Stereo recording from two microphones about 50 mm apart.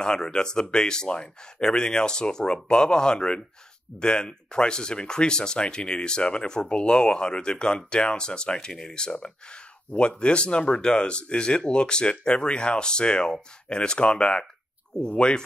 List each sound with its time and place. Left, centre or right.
0.0 s speech: centre